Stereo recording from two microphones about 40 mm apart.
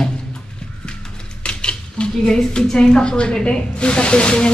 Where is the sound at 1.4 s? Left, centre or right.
Left.